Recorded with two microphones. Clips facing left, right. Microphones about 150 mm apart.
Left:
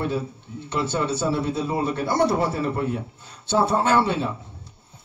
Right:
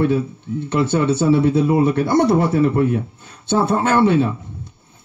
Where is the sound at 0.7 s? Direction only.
60° right (ahead or behind).